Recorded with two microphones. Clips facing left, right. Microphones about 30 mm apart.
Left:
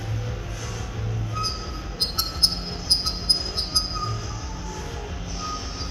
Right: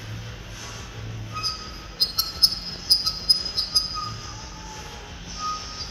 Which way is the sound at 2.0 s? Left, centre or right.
Centre.